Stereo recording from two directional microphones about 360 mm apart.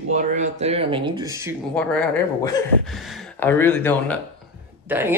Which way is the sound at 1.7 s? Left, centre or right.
Centre.